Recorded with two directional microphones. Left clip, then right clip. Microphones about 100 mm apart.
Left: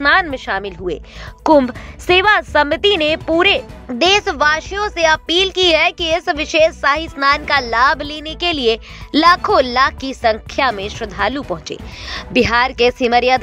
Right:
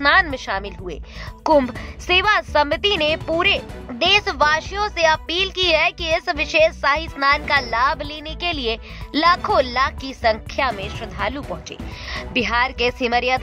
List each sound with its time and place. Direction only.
0.0 s a woman's voice: 35° left (ahead or behind)
4.2 s speech: 30° left (ahead or behind)